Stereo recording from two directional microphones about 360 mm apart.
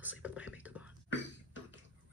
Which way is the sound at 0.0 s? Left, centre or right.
Centre.